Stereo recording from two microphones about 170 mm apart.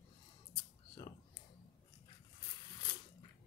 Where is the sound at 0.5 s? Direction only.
25° left (ahead or behind).